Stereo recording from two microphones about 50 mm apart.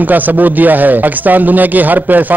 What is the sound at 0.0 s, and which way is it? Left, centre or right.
A man's voice, right.